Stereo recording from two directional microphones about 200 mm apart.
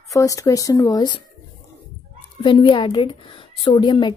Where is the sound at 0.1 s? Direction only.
15° left (ahead or behind).